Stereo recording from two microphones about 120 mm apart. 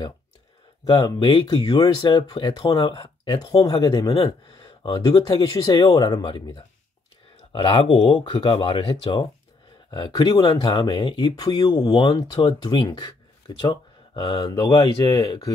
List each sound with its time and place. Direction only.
0.8 s speech: 35° left (ahead or behind)
7.5 s speech: 50° left (ahead or behind)
9.8 s speech: 35° left (ahead or behind)
14.4 s speech: 35° left (ahead or behind)